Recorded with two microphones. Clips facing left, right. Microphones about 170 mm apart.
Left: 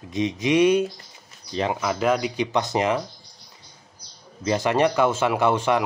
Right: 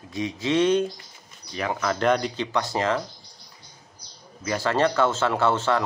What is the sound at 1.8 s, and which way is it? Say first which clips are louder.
Speech: right 2 dB; 5° left (ahead or behind).